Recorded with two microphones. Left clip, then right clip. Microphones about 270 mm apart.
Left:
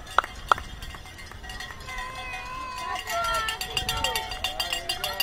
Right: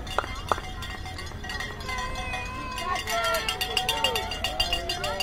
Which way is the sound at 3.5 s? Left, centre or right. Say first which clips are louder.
Right 2 dB; centre.